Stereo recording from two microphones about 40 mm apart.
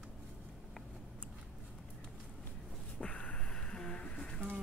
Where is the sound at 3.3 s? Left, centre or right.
Left.